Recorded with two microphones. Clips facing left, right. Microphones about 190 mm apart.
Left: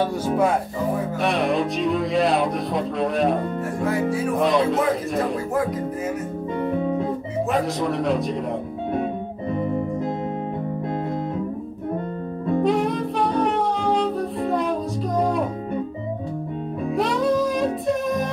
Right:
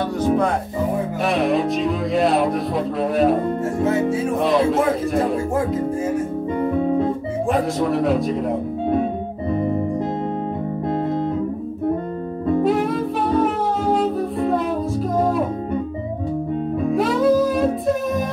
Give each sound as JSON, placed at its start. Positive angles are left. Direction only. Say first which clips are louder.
{"t": 1.2, "sound": "music", "louder": "right 3 dB", "side_deg": 0}
{"t": 3.8, "sound": "music", "louder": "right 3 dB", "side_deg": -25}
{"t": 4.4, "sound": "music", "louder": "right 1 dB", "side_deg": 0}
{"t": 7.5, "sound": "speech", "louder": "right 3 dB", "side_deg": 0}
{"t": 12.6, "sound": "music", "louder": "right 2 dB", "side_deg": 0}
{"t": 16.9, "sound": "music", "louder": "right 4 dB", "side_deg": 0}